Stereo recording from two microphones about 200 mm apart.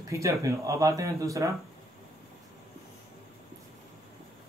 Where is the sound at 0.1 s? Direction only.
15° right (ahead or behind).